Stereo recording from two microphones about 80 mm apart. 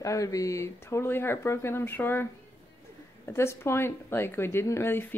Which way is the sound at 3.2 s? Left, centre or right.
Left.